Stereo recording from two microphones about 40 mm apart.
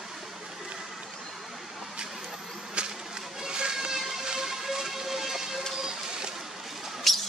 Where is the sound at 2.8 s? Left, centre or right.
Right.